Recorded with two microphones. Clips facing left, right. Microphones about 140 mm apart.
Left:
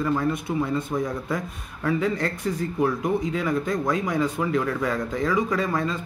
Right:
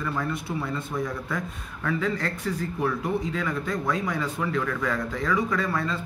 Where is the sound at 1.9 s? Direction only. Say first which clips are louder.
Left 3 dB; 20° left (ahead or behind).